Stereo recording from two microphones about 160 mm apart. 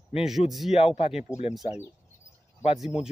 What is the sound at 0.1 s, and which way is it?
Speech, 5° right (ahead or behind).